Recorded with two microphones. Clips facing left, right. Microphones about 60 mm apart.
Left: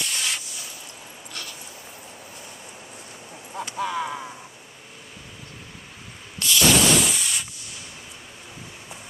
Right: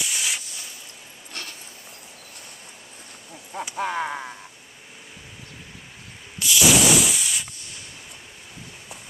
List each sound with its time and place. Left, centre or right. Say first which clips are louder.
0.0 s a sound: even; centre
3.7 s speech: right 1 dB; right
6.4 s sanding: even; centre